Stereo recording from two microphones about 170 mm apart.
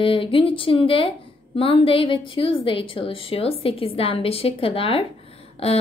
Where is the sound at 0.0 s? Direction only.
30° left (ahead or behind).